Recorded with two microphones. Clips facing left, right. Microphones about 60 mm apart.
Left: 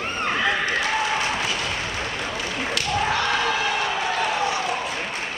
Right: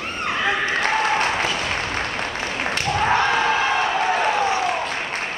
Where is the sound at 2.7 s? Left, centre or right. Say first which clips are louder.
Right 4 dB; right.